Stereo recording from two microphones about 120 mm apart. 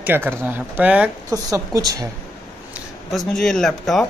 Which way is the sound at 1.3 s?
30° right (ahead or behind).